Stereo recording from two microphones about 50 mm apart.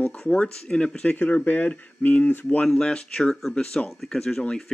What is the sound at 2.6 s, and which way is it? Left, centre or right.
Speech, centre.